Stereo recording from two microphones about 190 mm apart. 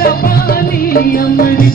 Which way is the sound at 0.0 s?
50° left (ahead or behind).